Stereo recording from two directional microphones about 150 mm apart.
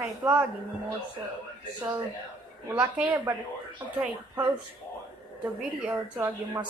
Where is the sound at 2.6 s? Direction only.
10° right (ahead or behind).